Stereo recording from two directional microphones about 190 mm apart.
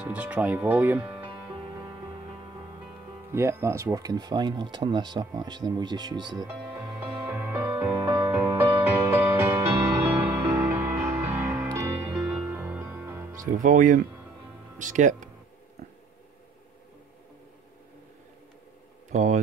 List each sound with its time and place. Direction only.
0.0 s speech: 5° right (ahead or behind)
1.2 s music: 20° right (ahead or behind)
3.3 s speech: 15° right (ahead or behind)
7.2 s music: 10° right (ahead or behind)
13.5 s speech: 45° right (ahead or behind)
19.0 s a sound: 40° right (ahead or behind)